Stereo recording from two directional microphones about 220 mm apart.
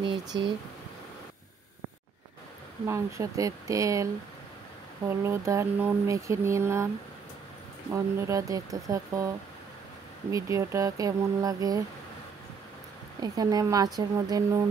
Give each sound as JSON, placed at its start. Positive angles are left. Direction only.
{"t": 0.0, "sound": "speech", "side_deg": -20}
{"t": 2.9, "sound": "speech", "side_deg": -15}
{"t": 7.9, "sound": "speech", "side_deg": -15}
{"t": 10.3, "sound": "speech", "side_deg": -15}
{"t": 13.2, "sound": "speech", "side_deg": -15}